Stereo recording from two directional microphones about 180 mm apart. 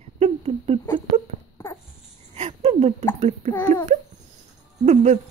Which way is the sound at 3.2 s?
40° right (ahead or behind).